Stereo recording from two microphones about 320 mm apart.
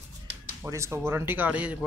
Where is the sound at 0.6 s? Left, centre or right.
Centre.